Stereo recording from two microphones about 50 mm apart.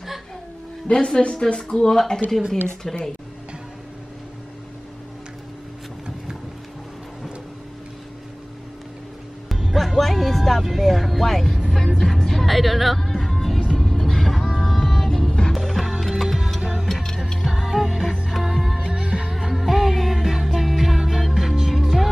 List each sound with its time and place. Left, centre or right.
0.8 s a woman's voice: centre
9.5 s speech: centre
13.7 s music: centre
15.5 s music: centre
16.8 s music: centre
17.5 s music: centre
18.8 s music: right
19.3 s music: centre